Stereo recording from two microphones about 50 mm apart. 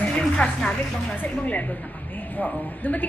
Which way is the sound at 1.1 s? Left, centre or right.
Left.